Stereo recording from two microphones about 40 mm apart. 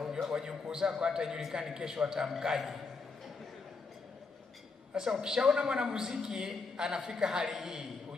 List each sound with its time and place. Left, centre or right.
0.0 s a man's voice: centre
4.9 s a man's voice: centre